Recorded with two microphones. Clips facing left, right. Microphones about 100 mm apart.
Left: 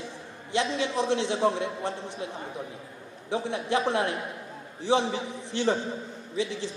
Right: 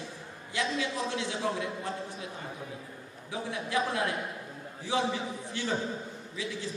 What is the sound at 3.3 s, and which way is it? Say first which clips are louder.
A man's voice: left 7 dB; 30° left (ahead or behind).